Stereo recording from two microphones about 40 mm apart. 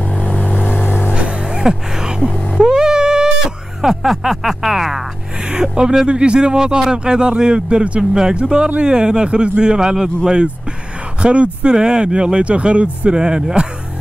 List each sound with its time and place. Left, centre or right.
0.0 s vehicle: left
1.1 s music: right
2.5 s a sound: centre
5.4 s speech: right